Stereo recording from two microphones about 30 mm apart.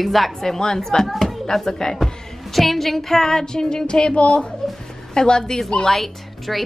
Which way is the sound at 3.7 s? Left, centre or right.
Left.